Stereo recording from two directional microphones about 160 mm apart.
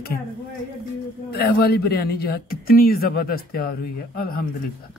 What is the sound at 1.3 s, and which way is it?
Speech, 80° left.